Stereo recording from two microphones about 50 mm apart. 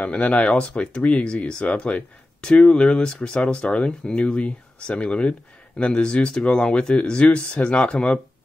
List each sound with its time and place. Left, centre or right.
0.0 s speech: left